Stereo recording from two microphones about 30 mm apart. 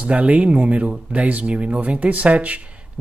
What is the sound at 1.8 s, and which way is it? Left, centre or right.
Speech, right.